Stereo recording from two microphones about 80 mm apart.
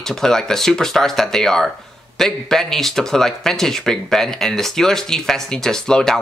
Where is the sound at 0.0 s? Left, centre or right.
Centre.